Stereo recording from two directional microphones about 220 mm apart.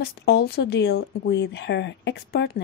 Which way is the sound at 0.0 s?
45° left (ahead or behind).